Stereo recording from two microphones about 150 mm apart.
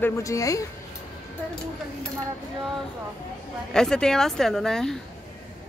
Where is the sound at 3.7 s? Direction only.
5° left (ahead or behind).